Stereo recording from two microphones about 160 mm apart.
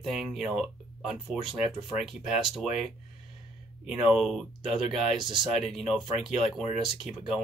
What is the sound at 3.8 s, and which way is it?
Speech, centre (ahead or behind).